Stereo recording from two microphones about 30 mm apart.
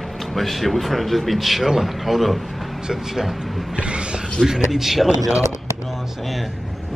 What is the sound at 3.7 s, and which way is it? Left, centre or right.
Speech, right.